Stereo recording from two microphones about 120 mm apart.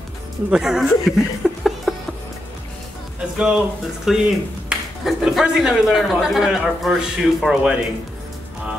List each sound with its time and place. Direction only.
0.5 s speech: 5° right (ahead or behind)
3.3 s speech: 5° right (ahead or behind)